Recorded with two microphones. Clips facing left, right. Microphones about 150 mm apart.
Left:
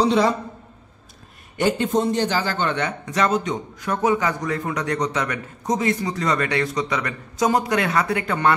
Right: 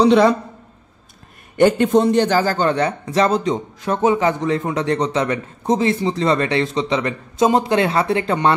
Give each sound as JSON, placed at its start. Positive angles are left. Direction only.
{"t": 0.0, "sound": "a man's voice", "side_deg": -75}
{"t": 1.6, "sound": "a man's voice", "side_deg": -65}